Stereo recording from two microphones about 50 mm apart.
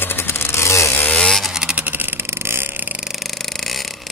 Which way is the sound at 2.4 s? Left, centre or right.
Right.